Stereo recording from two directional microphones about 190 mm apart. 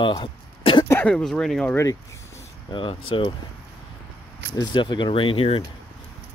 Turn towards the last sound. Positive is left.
turn(degrees=30)  # may be behind; listen again after turning